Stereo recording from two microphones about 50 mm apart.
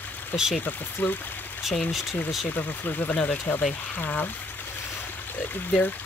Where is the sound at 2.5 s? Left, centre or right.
Left.